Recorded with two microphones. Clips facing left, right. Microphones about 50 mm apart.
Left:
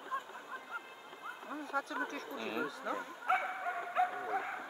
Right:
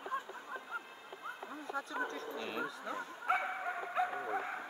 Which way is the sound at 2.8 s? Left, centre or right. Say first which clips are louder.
Left 2 dB; centre.